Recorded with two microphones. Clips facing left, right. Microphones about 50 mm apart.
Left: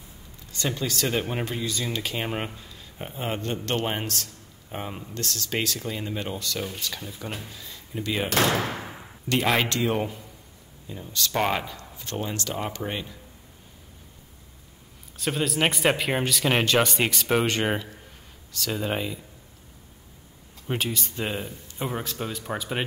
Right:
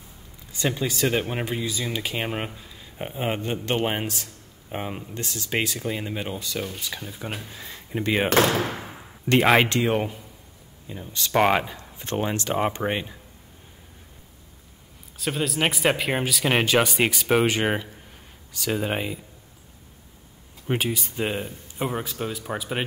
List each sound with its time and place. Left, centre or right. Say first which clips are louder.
0.5 s speech: right 3 dB; centre
7.4 s speech: right 3 dB; right
8.7 s slam: even; centre
9.5 s speech: right 3 dB; right
15.1 s speech: even; centre
20.6 s speech: right 3 dB; centre